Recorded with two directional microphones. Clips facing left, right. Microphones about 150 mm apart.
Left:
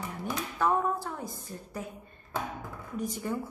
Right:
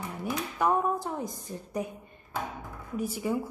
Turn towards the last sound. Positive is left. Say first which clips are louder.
# right 3 dB
turn(degrees=-10)  # may be behind; listen again after turning